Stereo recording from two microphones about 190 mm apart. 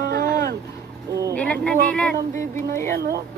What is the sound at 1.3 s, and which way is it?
A woman's voice, 5° left (ahead or behind).